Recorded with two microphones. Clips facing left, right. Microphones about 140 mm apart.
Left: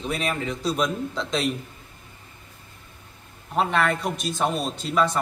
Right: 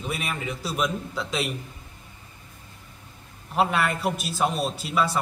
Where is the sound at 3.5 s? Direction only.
5° right (ahead or behind).